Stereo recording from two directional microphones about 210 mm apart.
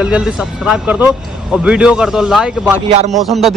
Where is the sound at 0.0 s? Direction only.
5° right (ahead or behind).